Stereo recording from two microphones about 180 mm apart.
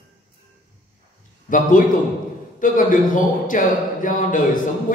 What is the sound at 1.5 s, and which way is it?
A man's voice, 45° left (ahead or behind).